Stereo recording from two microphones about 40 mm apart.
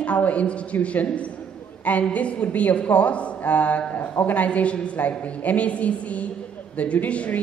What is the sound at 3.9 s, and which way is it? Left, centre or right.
Speech, left.